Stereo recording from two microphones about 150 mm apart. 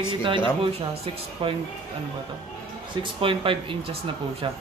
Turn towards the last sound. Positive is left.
turn(degrees=-35)  # may be behind; listen again after turning